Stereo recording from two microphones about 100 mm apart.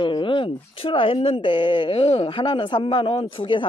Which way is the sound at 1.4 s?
55° left (ahead or behind).